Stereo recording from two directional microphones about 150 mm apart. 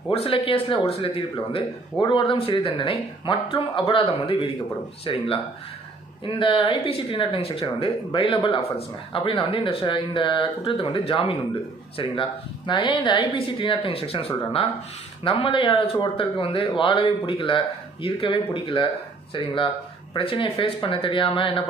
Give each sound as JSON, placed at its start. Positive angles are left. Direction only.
{"t": 0.1, "sound": "speech", "side_deg": 40}